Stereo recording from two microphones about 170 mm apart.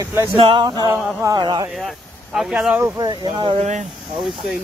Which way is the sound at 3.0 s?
25° right (ahead or behind).